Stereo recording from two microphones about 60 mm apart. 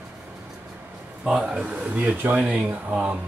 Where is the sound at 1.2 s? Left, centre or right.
Centre.